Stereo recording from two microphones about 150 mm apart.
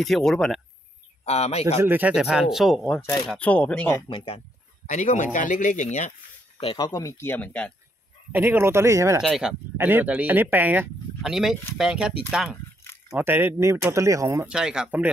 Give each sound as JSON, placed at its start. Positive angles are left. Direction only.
{"t": 0.0, "sound": "speech", "side_deg": 0}
{"t": 1.2, "sound": "speech", "side_deg": 45}
{"t": 1.8, "sound": "speech", "side_deg": -10}
{"t": 3.0, "sound": "speech", "side_deg": 15}
{"t": 4.1, "sound": "speech", "side_deg": 35}
{"t": 4.8, "sound": "speech", "side_deg": 55}
{"t": 6.6, "sound": "speech", "side_deg": 30}
{"t": 8.3, "sound": "speech", "side_deg": -15}
{"t": 9.2, "sound": "speech", "side_deg": 0}
{"t": 9.8, "sound": "speech", "side_deg": -15}
{"t": 11.2, "sound": "speech", "side_deg": 0}
{"t": 14.5, "sound": "speech", "side_deg": -5}